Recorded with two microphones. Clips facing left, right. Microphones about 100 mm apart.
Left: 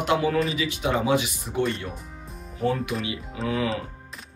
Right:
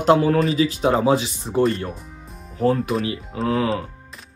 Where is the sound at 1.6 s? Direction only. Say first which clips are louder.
Right 7 dB; 40° right (ahead or behind).